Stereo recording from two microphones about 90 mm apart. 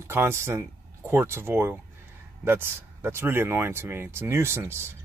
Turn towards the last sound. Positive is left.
turn(degrees=-25)  # may be behind; listen again after turning